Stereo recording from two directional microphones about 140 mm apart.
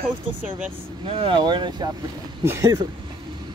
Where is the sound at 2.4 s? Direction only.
20° right (ahead or behind).